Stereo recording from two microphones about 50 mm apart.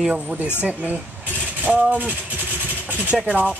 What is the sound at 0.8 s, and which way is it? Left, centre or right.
Speech, right.